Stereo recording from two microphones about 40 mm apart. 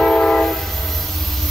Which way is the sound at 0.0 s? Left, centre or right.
Left.